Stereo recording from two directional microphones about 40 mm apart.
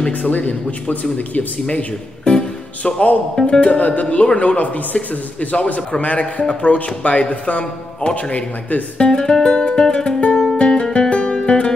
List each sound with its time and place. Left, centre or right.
0.1 s a man's voice: left
1.7 s speech: left
3.8 s a man's voice: left
8.9 s speech: left
9.5 s music: left